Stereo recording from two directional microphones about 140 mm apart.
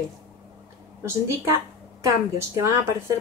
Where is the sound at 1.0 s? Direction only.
20° right (ahead or behind).